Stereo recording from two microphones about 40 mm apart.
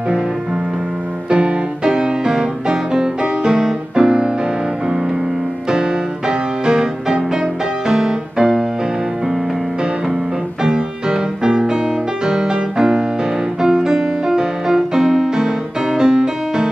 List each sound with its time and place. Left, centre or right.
1.3 s music: right
5.7 s music: centre
10.6 s music: centre